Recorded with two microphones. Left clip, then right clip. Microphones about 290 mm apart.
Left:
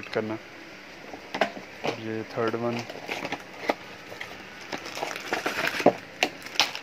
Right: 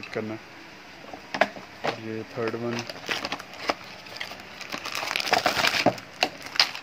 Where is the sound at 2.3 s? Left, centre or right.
Centre.